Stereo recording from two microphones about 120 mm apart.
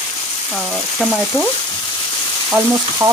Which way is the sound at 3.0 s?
25° right (ahead or behind).